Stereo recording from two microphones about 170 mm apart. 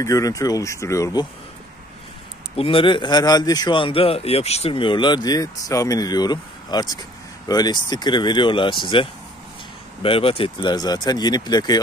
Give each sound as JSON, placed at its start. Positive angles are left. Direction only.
{"t": 0.0, "sound": "a man's voice", "side_deg": 20}
{"t": 2.5, "sound": "a man's voice", "side_deg": 30}